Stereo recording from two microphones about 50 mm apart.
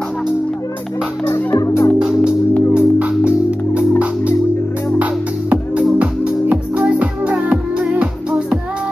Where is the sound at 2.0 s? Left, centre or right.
Centre.